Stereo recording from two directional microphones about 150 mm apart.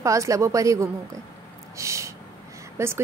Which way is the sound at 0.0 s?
20° right (ahead or behind).